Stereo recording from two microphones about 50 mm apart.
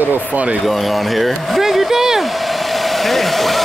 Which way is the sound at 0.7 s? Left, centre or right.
Centre.